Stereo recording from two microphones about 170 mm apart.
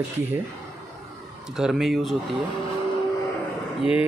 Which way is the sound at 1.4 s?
5° right (ahead or behind).